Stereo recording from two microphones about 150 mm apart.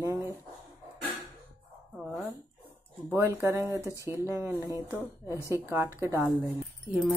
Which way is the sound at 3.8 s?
20° left (ahead or behind).